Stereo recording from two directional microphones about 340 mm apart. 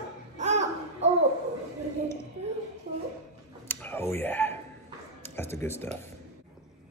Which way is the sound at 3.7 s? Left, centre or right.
Centre.